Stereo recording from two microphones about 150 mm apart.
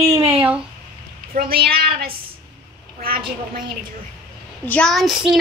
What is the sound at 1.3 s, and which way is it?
Speech, 90° right.